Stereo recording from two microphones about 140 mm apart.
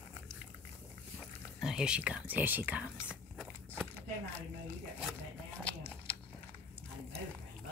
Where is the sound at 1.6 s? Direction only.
5° right (ahead or behind).